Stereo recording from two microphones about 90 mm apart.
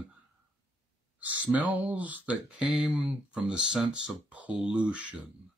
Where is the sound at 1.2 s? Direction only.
15° right (ahead or behind).